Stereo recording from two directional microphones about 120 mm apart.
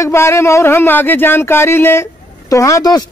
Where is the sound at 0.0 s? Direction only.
20° left (ahead or behind).